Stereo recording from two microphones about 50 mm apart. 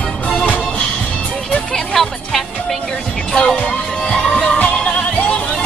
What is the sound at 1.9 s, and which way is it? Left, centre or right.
Music, centre.